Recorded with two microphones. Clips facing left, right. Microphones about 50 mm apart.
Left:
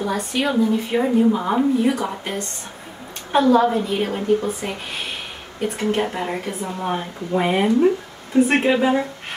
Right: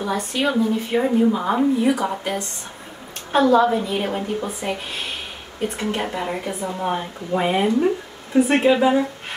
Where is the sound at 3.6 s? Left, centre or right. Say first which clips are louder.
Even; centre.